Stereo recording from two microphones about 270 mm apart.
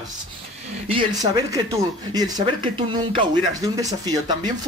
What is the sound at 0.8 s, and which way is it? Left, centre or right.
Speech, centre.